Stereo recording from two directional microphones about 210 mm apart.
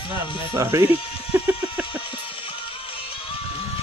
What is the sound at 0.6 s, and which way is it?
Speech, 15° right (ahead or behind).